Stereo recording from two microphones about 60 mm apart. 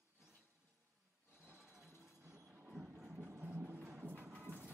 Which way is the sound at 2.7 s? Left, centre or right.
Centre.